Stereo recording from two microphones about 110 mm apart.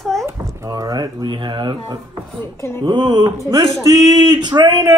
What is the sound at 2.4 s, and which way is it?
Speech, 25° left (ahead or behind).